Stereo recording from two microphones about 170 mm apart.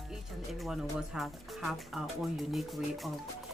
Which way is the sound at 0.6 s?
Centre (ahead or behind).